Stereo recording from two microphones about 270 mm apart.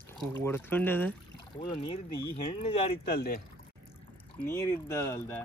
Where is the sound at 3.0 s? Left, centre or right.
Left.